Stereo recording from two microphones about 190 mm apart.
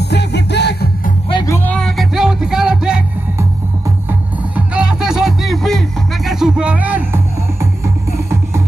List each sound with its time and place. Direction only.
0.1 s music: 65° left (ahead or behind)
1.3 s music: 15° left (ahead or behind); by 3.0 s 5° right (ahead or behind)
4.6 s music: 5° right (ahead or behind)